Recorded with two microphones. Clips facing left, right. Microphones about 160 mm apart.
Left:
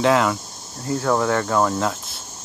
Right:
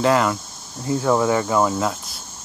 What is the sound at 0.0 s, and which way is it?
Speech, centre (ahead or behind).